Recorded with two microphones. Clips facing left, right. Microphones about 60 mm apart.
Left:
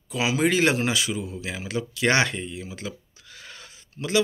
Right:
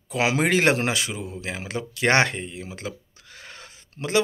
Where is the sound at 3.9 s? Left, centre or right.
Right.